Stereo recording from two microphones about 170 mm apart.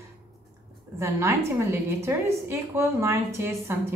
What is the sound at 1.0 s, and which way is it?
A woman's voice, 15° right (ahead or behind).